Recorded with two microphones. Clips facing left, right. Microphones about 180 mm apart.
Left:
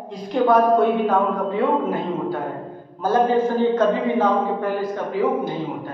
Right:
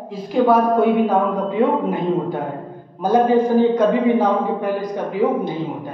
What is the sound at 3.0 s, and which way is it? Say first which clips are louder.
A man's voice: right 3 dB; 15° right (ahead or behind).